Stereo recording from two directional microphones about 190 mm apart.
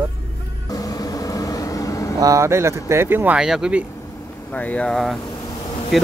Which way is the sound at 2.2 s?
15° right (ahead or behind).